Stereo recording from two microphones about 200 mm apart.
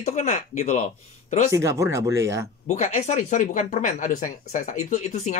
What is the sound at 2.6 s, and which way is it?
Speech, 35° left (ahead or behind).